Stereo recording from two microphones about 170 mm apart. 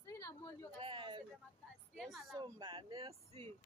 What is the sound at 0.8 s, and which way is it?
Speech, 30° right (ahead or behind).